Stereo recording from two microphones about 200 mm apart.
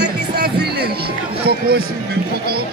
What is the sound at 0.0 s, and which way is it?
Music, 55° right (ahead or behind).